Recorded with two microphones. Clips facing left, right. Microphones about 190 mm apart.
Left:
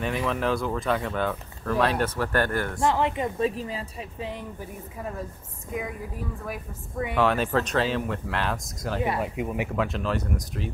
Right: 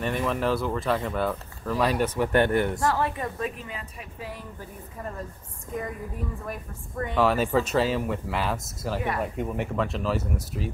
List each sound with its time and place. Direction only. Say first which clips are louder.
0.0 s speech: even; centre (ahead or behind); by 2.8 s 20° right (ahead or behind)
2.8 s a woman's voice: left 2 dB; 20° left (ahead or behind)
5.7 s speech: even; 5° left (ahead or behind)